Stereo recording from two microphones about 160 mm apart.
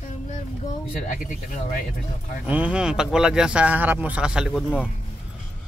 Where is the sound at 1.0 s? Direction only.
55° left (ahead or behind).